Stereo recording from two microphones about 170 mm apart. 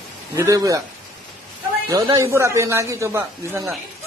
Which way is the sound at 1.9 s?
20° right (ahead or behind).